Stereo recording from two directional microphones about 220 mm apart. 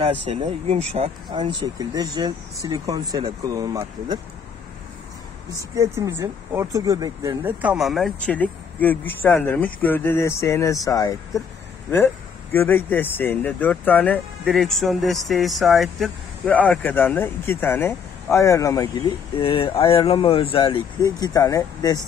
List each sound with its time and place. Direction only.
0.3 s speech: 25° right (ahead or behind)
5.8 s speech: 15° right (ahead or behind); by 11.1 s 15° left (ahead or behind)
12.5 s speech: 10° left (ahead or behind)